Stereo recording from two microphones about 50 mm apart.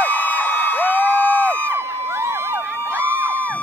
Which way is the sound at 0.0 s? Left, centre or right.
Left.